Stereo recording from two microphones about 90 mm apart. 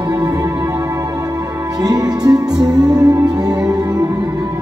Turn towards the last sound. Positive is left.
turn(degrees=-45)  # may be behind; listen again after turning